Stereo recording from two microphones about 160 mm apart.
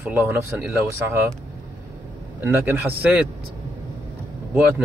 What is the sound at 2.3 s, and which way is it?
Speech, 15° right (ahead or behind).